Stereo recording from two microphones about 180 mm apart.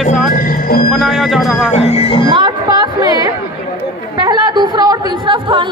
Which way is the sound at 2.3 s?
25° right (ahead or behind).